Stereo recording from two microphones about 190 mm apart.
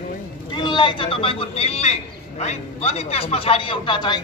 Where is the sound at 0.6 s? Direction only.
25° left (ahead or behind).